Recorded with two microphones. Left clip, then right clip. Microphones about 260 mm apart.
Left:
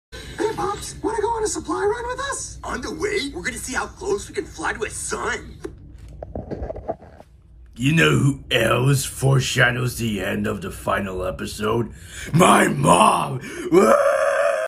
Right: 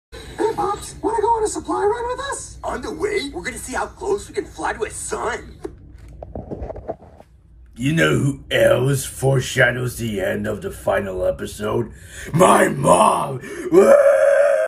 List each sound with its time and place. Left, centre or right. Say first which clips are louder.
0.1 s speech: right 3 dB; centre
6.3 s a sound: even; right
7.8 s speech: even; centre